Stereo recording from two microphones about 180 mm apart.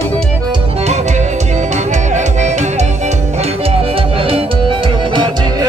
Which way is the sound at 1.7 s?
40° right (ahead or behind).